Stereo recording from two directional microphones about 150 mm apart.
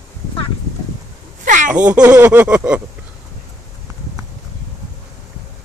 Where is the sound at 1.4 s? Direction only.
60° right (ahead or behind).